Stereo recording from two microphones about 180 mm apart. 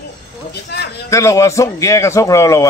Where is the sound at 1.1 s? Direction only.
15° left (ahead or behind).